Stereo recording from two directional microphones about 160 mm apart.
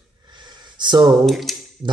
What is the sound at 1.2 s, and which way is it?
Speech, centre (ahead or behind).